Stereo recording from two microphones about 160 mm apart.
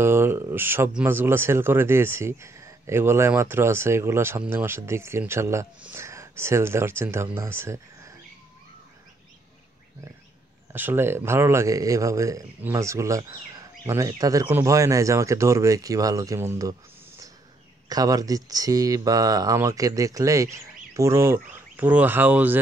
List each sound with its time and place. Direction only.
0.0 s speech: 15° right (ahead or behind)
10.7 s speech: 10° right (ahead or behind)
17.8 s speech: 25° right (ahead or behind)